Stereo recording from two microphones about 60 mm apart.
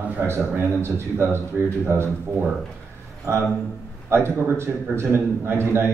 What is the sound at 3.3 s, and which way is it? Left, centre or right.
Speech, right.